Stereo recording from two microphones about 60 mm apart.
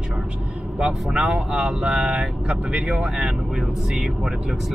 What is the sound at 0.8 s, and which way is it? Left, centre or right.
Speech, centre.